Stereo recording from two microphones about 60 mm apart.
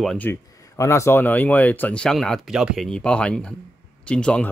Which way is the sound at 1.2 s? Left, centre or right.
Left.